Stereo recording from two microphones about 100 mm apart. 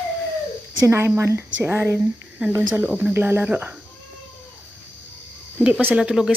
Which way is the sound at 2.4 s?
10° right (ahead or behind).